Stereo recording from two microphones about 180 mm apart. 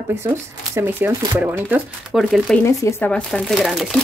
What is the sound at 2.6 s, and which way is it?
Speech, 15° left (ahead or behind).